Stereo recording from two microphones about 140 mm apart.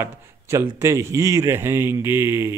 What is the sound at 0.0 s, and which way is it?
A man's voice, 20° right (ahead or behind).